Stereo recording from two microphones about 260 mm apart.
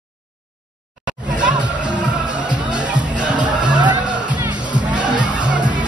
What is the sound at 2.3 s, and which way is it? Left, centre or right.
Music, centre.